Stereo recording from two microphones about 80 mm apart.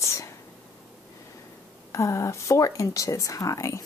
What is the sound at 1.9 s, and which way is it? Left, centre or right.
Speech, left.